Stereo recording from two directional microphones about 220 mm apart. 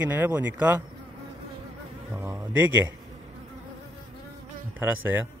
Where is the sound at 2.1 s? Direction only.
10° right (ahead or behind).